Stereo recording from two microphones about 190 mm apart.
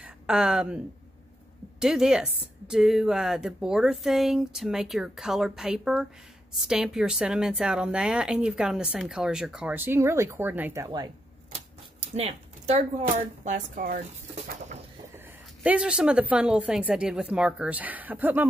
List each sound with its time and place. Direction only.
0.0 s speech: 5° right (ahead or behind)
1.8 s speech: 5° right (ahead or behind)
12.2 s speech: 35° right (ahead or behind)
15.1 s a woman's voice: 5° right (ahead or behind)